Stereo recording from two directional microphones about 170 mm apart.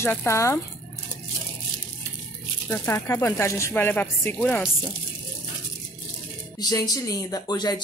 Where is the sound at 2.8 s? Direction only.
15° left (ahead or behind).